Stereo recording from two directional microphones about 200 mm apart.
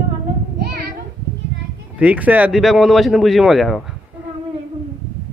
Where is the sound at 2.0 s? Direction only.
5° right (ahead or behind).